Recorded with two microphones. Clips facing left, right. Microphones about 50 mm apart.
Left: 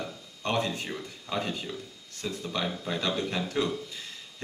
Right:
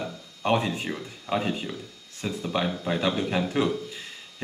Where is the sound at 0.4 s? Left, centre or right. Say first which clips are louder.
Right 5 dB; centre.